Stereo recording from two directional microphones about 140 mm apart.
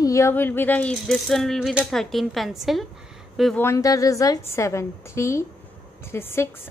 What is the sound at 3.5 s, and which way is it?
A woman's voice, 20° left (ahead or behind).